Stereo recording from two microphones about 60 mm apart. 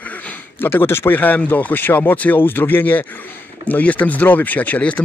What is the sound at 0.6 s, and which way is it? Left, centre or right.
Speech, left.